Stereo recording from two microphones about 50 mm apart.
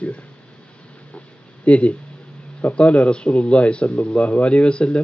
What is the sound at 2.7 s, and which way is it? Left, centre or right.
Speech, left.